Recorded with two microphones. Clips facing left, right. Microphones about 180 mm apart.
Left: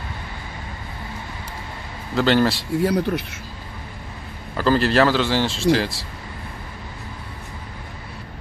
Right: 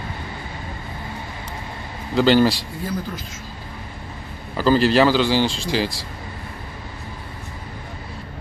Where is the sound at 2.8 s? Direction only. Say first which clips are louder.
Left 8 dB; 70° left (ahead or behind).